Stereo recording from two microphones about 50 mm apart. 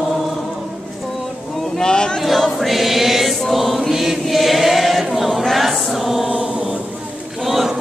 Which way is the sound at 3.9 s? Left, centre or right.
Centre.